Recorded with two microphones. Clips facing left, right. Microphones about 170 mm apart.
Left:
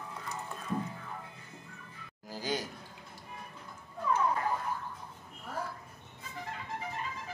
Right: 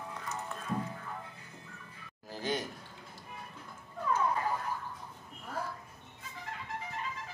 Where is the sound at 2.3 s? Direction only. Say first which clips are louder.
Even; 20° right (ahead or behind).